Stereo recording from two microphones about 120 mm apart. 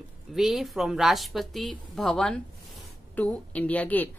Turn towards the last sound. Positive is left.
turn(degrees=15)  # may be behind; listen again after turning